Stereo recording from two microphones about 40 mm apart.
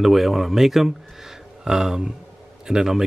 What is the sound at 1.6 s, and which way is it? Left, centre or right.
Speech, centre.